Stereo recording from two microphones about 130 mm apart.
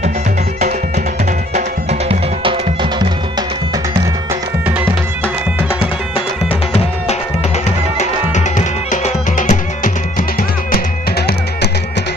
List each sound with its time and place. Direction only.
1.5 s music: 55° right (ahead or behind)
2.4 s music: 40° right (ahead or behind)
8.0 s music: 65° left (ahead or behind)